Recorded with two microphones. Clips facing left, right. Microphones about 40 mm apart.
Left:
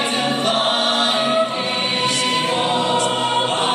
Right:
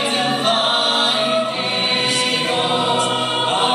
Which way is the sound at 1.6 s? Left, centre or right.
Centre.